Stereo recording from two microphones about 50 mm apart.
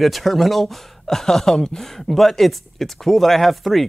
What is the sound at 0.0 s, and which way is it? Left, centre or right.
Speech, centre.